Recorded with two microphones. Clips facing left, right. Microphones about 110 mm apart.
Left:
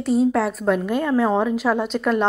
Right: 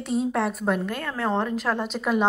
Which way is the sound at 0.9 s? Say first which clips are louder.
Left 8 dB; 15° left (ahead or behind).